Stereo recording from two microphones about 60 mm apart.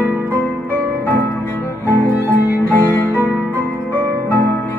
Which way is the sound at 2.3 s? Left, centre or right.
Right.